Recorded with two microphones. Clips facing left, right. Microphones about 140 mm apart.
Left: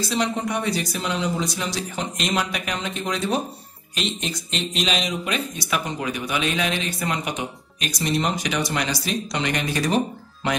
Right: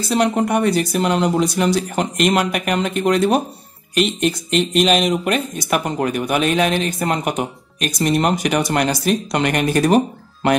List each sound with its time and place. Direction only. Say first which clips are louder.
0.1 s speech: right 9 dB; 60° right (ahead or behind)